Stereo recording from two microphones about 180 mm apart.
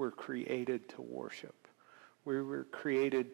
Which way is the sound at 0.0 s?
20° right (ahead or behind).